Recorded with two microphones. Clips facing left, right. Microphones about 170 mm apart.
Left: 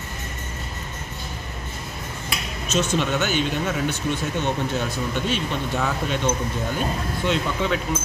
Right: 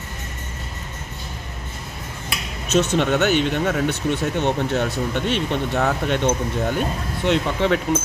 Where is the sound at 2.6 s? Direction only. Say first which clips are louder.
Right 4 dB; 65° right (ahead or behind).